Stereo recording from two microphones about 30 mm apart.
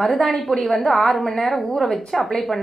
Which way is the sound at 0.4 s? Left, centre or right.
Centre.